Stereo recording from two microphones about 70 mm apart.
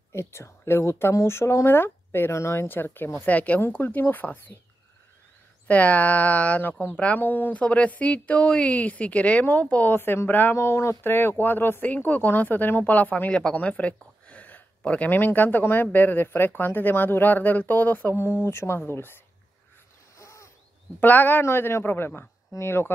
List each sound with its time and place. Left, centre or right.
0.1 s speech: left
5.7 s speech: left
9.9 s speech: left
10.5 s speech: left
20.2 s a sound: left
21.0 s speech: left